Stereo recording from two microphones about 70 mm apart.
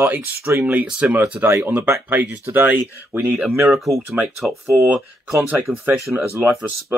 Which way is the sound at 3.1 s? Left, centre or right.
Right.